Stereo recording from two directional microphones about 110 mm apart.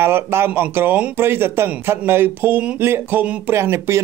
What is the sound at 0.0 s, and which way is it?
Speech, 20° right (ahead or behind).